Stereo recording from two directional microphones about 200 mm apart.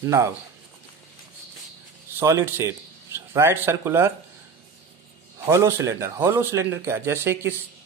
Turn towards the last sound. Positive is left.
turn(degrees=-10)  # may be behind; listen again after turning